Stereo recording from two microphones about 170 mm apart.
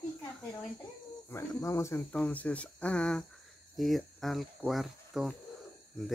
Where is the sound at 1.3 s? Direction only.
15° left (ahead or behind).